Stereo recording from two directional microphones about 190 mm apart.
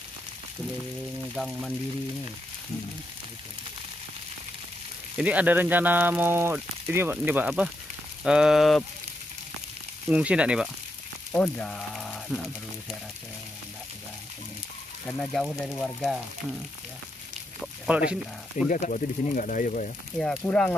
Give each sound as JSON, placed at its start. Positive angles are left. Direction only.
{"t": 1.3, "sound": "frying", "side_deg": 0}
{"t": 5.1, "sound": "speech", "side_deg": -5}
{"t": 8.2, "sound": "frying", "side_deg": -5}
{"t": 10.0, "sound": "frying", "side_deg": -5}
{"t": 15.0, "sound": "frying", "side_deg": 0}
{"t": 17.8, "sound": "frying", "side_deg": -5}
{"t": 18.7, "sound": "speech", "side_deg": 45}
{"t": 20.2, "sound": "frying", "side_deg": 5}